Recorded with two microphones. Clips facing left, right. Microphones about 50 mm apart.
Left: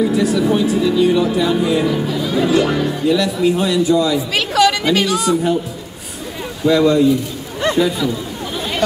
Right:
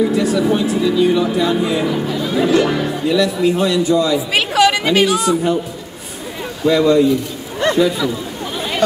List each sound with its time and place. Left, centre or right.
0.1 s speech: centre
4.3 s chatter: right
5.3 s a man's voice: centre
6.6 s speech: centre